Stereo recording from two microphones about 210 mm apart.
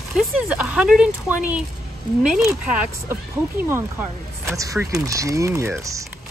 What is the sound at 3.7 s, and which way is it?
Speech, 10° right (ahead or behind).